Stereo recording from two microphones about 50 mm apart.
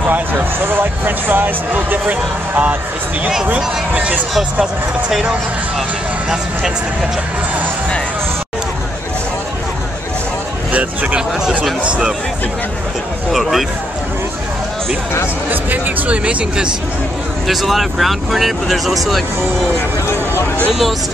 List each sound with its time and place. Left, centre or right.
0.1 s speech: right
3.9 s speech: right
10.7 s speech: right
13.3 s speech: centre
15.5 s speech: right
17.5 s speech: centre